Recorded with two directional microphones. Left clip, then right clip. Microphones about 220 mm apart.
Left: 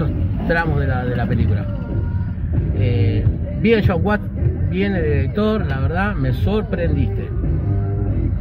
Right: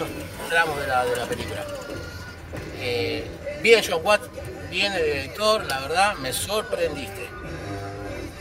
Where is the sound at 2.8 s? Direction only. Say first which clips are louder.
Even; 10° right (ahead or behind).